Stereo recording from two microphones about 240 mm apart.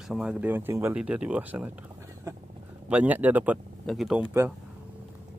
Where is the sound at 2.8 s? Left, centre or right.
Centre.